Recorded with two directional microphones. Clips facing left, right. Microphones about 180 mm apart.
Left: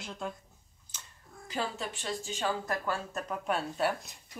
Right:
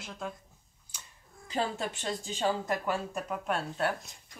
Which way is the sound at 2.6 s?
20° right (ahead or behind).